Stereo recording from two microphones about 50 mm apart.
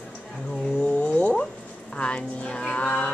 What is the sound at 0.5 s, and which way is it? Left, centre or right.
A woman's voice, centre.